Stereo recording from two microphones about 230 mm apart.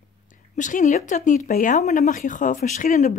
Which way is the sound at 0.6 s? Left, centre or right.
Left.